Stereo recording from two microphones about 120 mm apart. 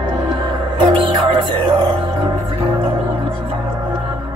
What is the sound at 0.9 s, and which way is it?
Music, 40° right (ahead or behind).